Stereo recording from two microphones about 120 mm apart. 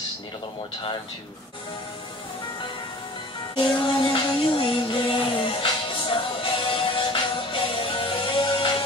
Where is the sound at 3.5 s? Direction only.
45° left (ahead or behind).